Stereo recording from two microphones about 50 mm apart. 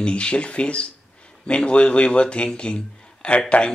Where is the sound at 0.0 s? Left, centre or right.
Left.